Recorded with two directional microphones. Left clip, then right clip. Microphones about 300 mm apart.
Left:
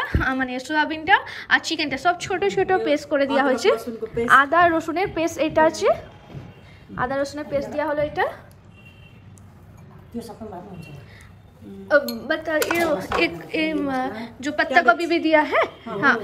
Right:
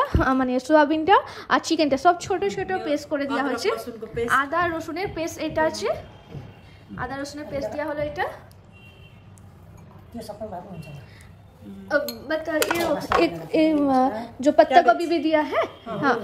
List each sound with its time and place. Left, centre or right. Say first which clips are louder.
0.2 s a woman's voice: right 2 dB; centre
2.4 s a woman's voice: left 5 dB; centre
11.9 s a woman's voice: left 4 dB; centre
13.1 s a woman's voice: right 2 dB; centre